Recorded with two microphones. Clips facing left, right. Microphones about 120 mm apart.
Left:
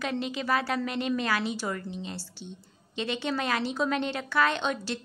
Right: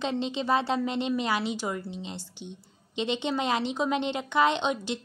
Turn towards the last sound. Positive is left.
turn(degrees=-20)  # may be behind; listen again after turning